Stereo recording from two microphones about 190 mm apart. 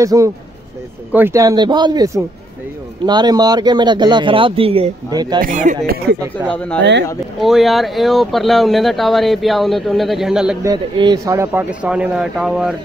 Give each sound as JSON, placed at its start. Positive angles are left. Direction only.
{"t": 0.0, "sound": "speech", "side_deg": -15}
{"t": 5.4, "sound": "speech", "side_deg": -45}
{"t": 6.8, "sound": "speech", "side_deg": -65}
{"t": 7.3, "sound": "speech", "side_deg": 0}
{"t": 10.6, "sound": "speech", "side_deg": -20}